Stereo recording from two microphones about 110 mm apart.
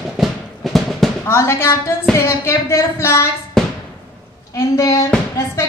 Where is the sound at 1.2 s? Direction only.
25° left (ahead or behind).